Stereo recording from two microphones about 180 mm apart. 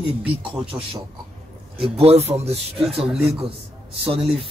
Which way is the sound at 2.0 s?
35° right (ahead or behind).